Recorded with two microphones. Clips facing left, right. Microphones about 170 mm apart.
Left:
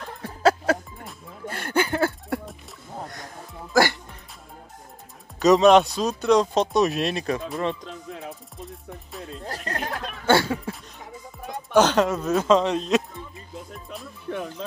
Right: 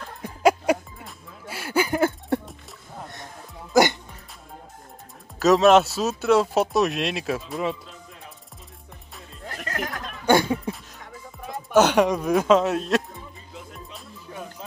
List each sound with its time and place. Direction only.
0.2 s music: 15° right (ahead or behind)
2.0 s a sound: 25° right (ahead or behind)
3.7 s music: 20° right (ahead or behind)
5.4 s speech: centre (ahead or behind)
10.2 s speech: 15° right (ahead or behind)
11.4 s speech: 5° right (ahead or behind)
14.3 s music: 65° left (ahead or behind)